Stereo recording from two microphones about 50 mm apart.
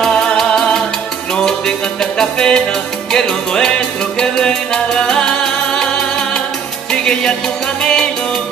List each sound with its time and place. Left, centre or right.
0.0 s music: centre